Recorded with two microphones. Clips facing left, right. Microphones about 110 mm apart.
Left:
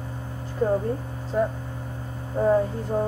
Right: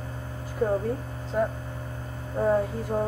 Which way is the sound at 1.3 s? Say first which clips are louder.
Left 2 dB; 5° right (ahead or behind).